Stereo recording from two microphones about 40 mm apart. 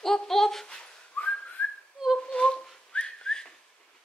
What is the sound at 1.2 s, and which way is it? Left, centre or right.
Whistling, left.